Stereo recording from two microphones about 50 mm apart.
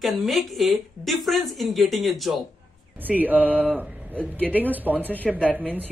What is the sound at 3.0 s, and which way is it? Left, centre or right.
Speech, right.